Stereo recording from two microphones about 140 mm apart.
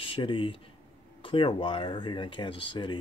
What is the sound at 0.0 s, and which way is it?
Speech, 40° left (ahead or behind).